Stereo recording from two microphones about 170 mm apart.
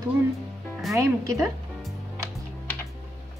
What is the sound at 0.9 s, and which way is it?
Speech, 15° right (ahead or behind).